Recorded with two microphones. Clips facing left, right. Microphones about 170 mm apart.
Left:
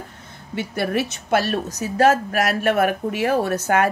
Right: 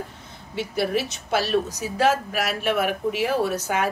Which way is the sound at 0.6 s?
55° left (ahead or behind).